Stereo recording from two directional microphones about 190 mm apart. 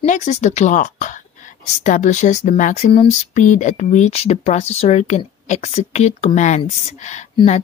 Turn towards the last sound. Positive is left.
turn(degrees=35)  # may be behind; listen again after turning